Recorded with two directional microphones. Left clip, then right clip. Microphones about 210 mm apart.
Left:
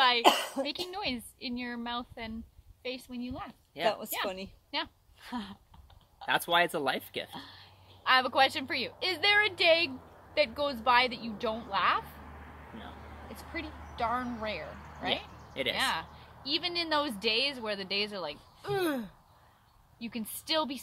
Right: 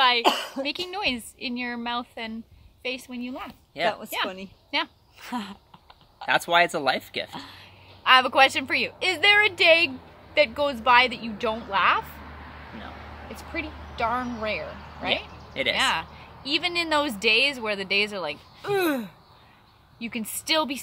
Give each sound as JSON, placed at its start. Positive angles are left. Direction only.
{"t": 0.2, "sound": "a woman's voice", "side_deg": 60}
{"t": 0.7, "sound": "a woman's voice", "side_deg": -15}
{"t": 3.8, "sound": "speech", "side_deg": 10}
{"t": 4.6, "sound": "speech", "side_deg": -10}
{"t": 6.2, "sound": "speech", "side_deg": 10}
{"t": 7.3, "sound": "a woman's voice", "side_deg": -15}
{"t": 13.4, "sound": "a woman's voice", "side_deg": -15}